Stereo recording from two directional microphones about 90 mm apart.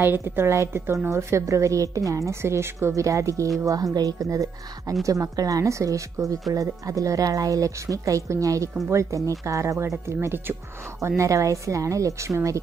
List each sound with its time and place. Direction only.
0.0 s a woman's voice: 25° right (ahead or behind)